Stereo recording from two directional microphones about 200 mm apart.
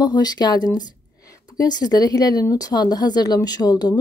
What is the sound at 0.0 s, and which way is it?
A woman's voice, 20° left (ahead or behind).